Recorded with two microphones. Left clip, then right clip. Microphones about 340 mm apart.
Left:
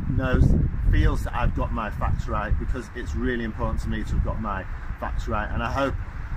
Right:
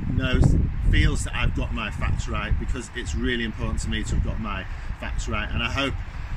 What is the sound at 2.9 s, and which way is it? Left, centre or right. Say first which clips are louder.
Speech: right 2 dB; left.